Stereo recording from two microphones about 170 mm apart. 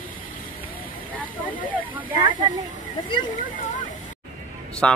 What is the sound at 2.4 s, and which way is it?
Speech, 25° right (ahead or behind).